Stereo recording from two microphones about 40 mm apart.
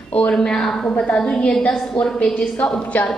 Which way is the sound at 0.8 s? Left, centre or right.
Left.